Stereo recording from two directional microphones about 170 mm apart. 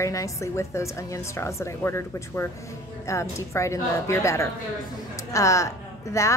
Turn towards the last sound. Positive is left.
turn(degrees=20)  # may be behind; listen again after turning